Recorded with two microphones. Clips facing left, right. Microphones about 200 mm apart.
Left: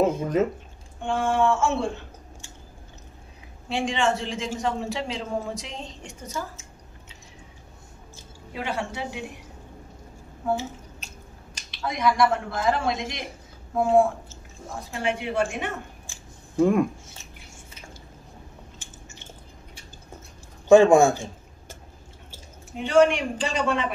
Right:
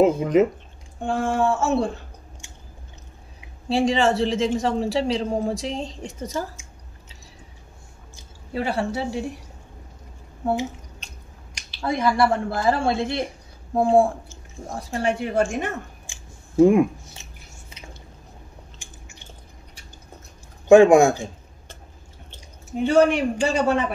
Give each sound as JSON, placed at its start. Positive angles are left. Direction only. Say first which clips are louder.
{"t": 0.0, "sound": "speech", "louder": "right 5 dB", "side_deg": -15}
{"t": 1.0, "sound": "speech", "louder": "right 1 dB", "side_deg": -35}
{"t": 3.6, "sound": "speech", "louder": "right 5 dB", "side_deg": -35}
{"t": 8.5, "sound": "speech", "louder": "right 6 dB", "side_deg": -35}
{"t": 10.4, "sound": "speech", "louder": "right 3 dB", "side_deg": -15}
{"t": 11.0, "sound": "squish", "louder": "left 1 dB", "side_deg": 5}
{"t": 11.7, "sound": "speech", "louder": "right 2 dB", "side_deg": -30}
{"t": 16.1, "sound": "scissors", "louder": "even", "side_deg": -15}
{"t": 20.6, "sound": "speech", "louder": "right 2 dB", "side_deg": -15}
{"t": 22.8, "sound": "speech", "louder": "right 2 dB", "side_deg": -40}